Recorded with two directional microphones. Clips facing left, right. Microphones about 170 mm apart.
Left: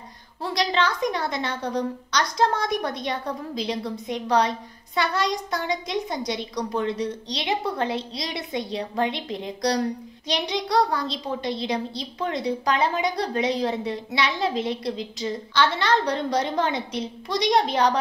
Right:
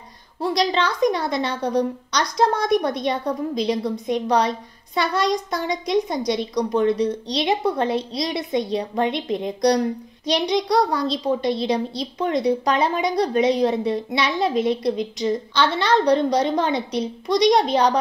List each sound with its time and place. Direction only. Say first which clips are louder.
0.4 s a woman's voice: right 3 dB; 20° right (ahead or behind)